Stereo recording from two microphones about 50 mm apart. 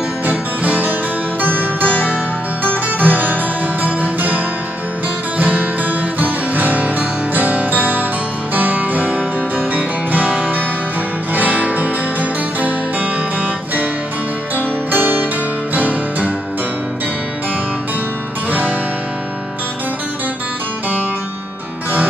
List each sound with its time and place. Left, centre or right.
0.3 s music: right
5.4 s music: right
14.9 s music: right
18.5 s music: right